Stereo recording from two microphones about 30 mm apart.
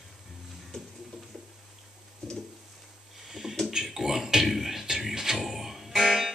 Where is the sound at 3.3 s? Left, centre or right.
Centre.